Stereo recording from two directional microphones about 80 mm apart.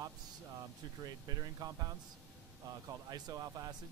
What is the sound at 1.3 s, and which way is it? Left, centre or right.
Speech, right.